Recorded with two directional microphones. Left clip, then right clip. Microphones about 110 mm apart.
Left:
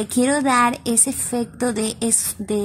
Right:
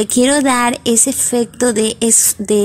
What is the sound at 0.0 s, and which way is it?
A woman's voice, 25° right (ahead or behind).